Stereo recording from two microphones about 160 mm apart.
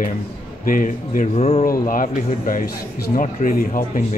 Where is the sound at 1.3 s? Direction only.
45° left (ahead or behind).